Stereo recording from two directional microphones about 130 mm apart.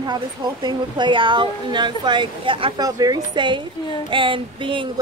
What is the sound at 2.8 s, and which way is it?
A woman's voice, 30° right (ahead or behind).